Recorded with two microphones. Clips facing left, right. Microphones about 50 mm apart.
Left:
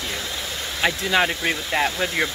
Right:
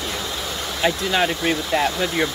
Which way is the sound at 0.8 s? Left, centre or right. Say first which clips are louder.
Even; left.